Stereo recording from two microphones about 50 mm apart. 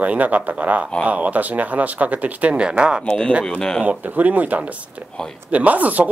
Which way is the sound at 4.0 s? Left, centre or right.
Right.